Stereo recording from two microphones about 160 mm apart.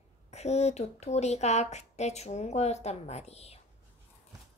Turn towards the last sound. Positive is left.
turn(degrees=40)  # may be behind; listen again after turning